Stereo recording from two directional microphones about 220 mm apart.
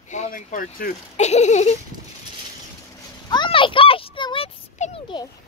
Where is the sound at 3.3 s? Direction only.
20° left (ahead or behind).